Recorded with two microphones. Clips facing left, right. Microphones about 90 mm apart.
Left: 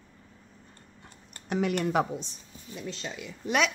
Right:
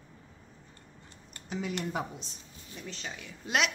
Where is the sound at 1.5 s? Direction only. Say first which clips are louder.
Left 7 dB; 60° left (ahead or behind).